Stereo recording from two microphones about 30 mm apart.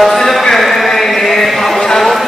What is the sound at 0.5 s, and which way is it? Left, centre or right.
Chant, centre.